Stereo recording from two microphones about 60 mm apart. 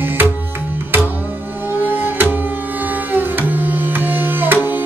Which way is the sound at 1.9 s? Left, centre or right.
Right.